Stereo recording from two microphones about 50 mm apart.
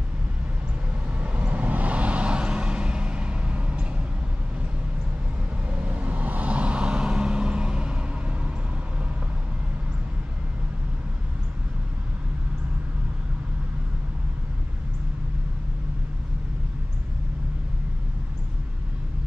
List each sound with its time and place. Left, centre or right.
1.1 s vehicle: right
5.7 s vehicle: right